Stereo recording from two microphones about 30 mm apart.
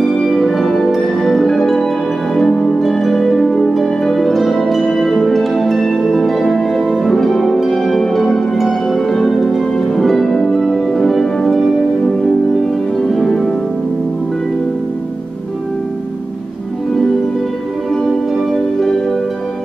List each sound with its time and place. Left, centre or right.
0.0 s music: centre
2.3 s harp: centre
4.8 s music: centre
7.0 s harp: centre
10.9 s music: centre
12.9 s music: centre
18.3 s music: centre